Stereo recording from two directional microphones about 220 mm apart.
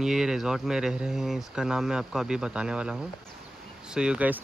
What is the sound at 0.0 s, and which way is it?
Speech, centre (ahead or behind).